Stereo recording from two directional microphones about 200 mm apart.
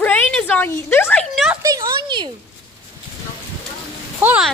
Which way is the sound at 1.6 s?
20° right (ahead or behind).